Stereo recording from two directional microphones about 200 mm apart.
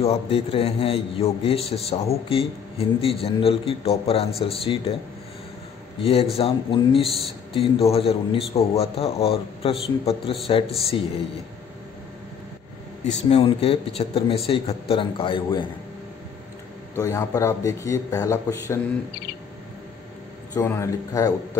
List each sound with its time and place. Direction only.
0.0 s a man's voice: 30° left (ahead or behind)
6.3 s a man's voice: 25° left (ahead or behind)
13.0 s a man's voice: 30° left (ahead or behind)
16.9 s a man's voice: 15° left (ahead or behind)
20.5 s a man's voice: 15° left (ahead or behind)